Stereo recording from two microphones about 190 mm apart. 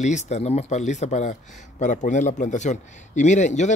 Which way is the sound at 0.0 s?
40° left (ahead or behind).